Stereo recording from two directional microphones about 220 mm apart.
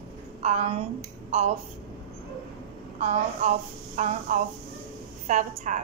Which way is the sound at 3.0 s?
30° right (ahead or behind).